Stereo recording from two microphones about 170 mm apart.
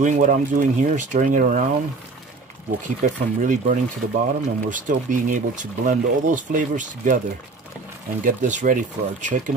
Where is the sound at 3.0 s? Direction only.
45° right (ahead or behind).